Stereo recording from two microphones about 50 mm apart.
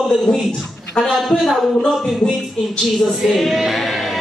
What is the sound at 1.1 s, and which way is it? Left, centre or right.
Speech, centre.